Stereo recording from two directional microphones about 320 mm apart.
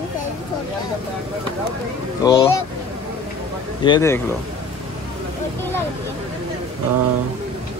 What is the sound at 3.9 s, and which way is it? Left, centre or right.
Speech, centre.